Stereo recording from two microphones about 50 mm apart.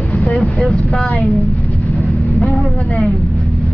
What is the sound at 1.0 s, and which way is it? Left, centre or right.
Speech, left.